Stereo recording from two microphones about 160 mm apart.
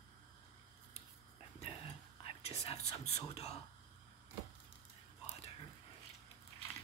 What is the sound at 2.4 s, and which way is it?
Speech, 40° left (ahead or behind).